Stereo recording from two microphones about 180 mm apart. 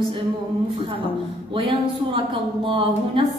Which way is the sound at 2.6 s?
30° right (ahead or behind).